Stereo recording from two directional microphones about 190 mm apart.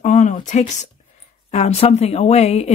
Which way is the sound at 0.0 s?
40° left (ahead or behind).